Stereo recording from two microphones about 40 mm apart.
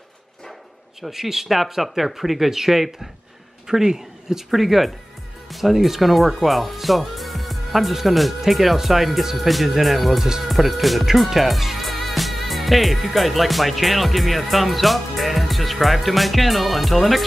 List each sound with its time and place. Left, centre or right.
1.0 s speech: centre